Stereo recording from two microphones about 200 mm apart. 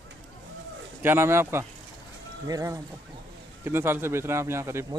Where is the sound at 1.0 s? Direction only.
10° right (ahead or behind).